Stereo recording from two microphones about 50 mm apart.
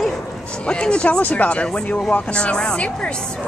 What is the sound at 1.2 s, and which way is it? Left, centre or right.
Speech, left.